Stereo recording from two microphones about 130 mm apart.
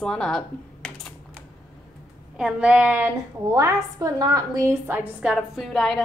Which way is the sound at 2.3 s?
10° right (ahead or behind).